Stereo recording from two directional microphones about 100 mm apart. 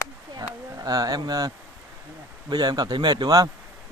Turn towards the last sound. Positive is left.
turn(degrees=-40)  # may be behind; listen again after turning